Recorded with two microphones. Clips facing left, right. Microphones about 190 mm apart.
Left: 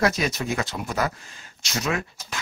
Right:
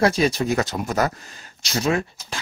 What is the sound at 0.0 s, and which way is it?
Speech, 30° right (ahead or behind).